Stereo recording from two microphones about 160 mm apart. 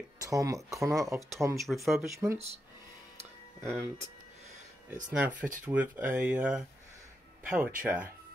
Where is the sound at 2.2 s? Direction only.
15° right (ahead or behind).